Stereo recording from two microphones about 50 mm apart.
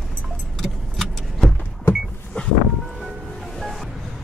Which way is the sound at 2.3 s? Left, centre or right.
Left.